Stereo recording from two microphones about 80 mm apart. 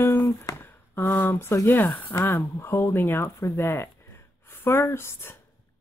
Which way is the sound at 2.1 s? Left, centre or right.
Left.